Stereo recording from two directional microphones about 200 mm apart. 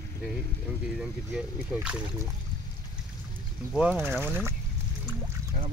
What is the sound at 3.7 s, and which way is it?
Speech, 5° right (ahead or behind).